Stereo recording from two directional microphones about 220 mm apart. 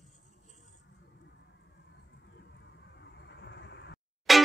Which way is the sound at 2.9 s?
50° left (ahead or behind).